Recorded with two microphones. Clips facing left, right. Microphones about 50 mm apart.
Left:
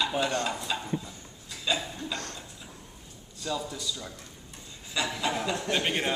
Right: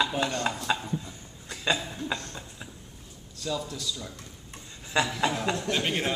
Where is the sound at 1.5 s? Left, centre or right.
Right.